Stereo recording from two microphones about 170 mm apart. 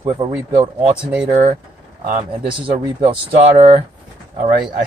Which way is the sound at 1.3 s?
45° right (ahead or behind).